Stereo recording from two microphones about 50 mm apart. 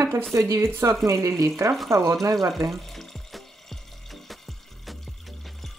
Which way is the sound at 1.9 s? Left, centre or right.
Right.